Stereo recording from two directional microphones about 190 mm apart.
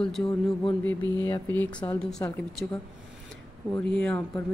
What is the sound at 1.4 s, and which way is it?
Speech, 10° left (ahead or behind).